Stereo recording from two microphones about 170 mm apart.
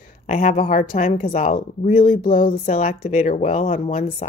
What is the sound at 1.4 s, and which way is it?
A woman's voice, 55° left (ahead or behind).